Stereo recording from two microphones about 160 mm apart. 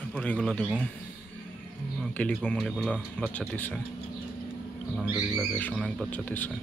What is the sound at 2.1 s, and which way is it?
Speech, 10° left (ahead or behind).